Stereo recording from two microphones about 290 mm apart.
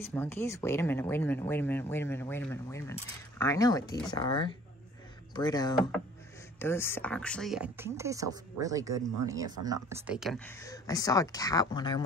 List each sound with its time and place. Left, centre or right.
0.0 s a woman's voice: centre